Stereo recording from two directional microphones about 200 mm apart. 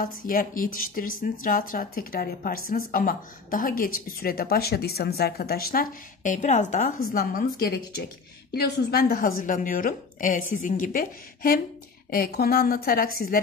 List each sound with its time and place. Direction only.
0.0 s a woman's voice: 45° left (ahead or behind)